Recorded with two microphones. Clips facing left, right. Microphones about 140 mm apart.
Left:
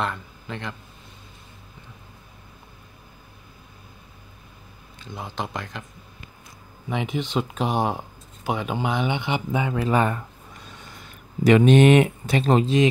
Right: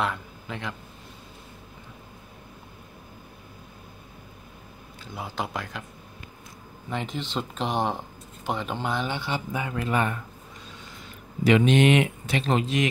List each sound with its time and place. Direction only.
0.0 s a man's voice: 5° right (ahead or behind)
5.0 s speech: 5° right (ahead or behind)
6.9 s speech: 15° left (ahead or behind)
9.8 s speech: 35° left (ahead or behind)
11.4 s speech: 45° left (ahead or behind)